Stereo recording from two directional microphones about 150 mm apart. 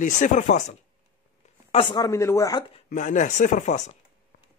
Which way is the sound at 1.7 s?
30° left (ahead or behind).